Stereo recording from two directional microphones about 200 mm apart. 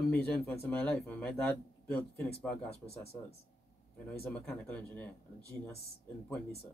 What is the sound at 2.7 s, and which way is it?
Speech, 30° left (ahead or behind).